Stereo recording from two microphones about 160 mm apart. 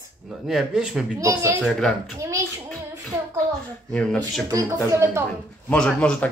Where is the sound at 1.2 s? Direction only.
20° right (ahead or behind).